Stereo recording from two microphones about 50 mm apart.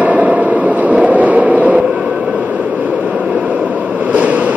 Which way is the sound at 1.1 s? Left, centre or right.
Right.